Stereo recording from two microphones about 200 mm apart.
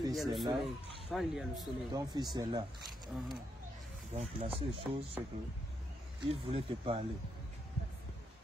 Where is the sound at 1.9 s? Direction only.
20° right (ahead or behind).